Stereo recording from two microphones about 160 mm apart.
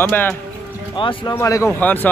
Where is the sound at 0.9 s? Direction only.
30° left (ahead or behind).